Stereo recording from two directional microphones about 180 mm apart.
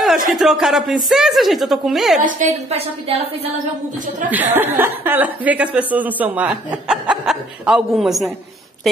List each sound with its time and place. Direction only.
0.3 s a woman's voice: centre (ahead or behind)
2.1 s a woman's voice: 45° right (ahead or behind)
4.3 s speech: 10° right (ahead or behind)